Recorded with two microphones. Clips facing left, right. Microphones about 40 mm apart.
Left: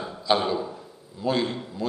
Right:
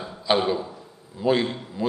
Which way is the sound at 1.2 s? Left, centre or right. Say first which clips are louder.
Right 3 dB; centre.